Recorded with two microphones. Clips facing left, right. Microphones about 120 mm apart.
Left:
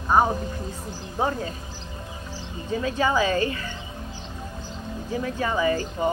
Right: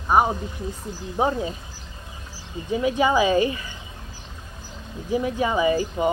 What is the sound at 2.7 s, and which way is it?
Speech, 15° right (ahead or behind).